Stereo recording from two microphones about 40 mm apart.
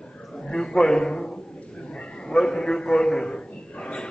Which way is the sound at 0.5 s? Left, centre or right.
Centre.